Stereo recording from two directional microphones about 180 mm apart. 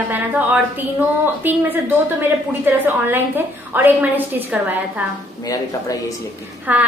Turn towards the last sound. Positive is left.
turn(degrees=-10)  # may be behind; listen again after turning